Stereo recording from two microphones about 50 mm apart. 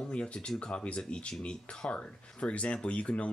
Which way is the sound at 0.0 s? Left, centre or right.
Left.